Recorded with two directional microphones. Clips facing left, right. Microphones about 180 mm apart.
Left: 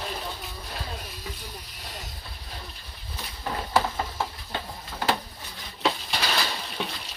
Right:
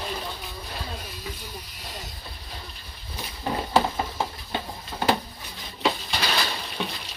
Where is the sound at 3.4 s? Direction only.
20° right (ahead or behind).